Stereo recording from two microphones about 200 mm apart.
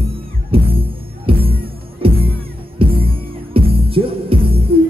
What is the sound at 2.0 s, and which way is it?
Music, 30° right (ahead or behind).